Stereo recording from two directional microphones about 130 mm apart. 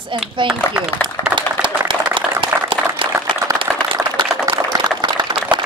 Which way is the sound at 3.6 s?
40° right (ahead or behind).